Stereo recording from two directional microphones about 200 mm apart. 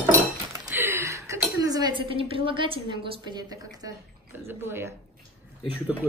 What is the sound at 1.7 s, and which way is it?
A woman's voice, 25° right (ahead or behind).